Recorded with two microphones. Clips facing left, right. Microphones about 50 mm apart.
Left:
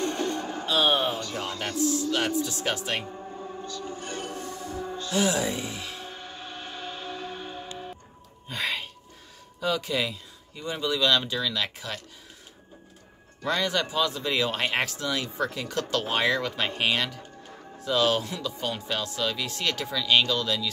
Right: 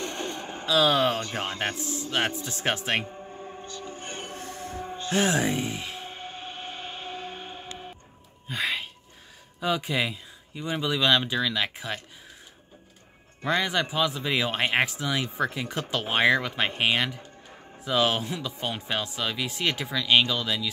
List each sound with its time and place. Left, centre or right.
0.2 s a sound: right
0.8 s speech: right
1.2 s speech: right
3.1 s music: centre
3.6 s music: right
8.5 s speech: centre
9.6 s speech: right
13.4 s speech: right